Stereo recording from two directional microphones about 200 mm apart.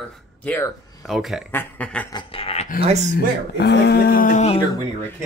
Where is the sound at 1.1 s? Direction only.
Centre (ahead or behind).